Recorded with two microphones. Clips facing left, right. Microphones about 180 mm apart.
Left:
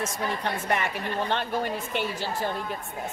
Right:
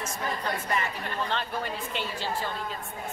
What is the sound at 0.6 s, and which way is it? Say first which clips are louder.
A woman's voice: left 3 dB; 65° left (ahead or behind).